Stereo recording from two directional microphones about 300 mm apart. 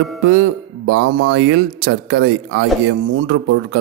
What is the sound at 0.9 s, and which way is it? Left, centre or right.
A man's voice, right.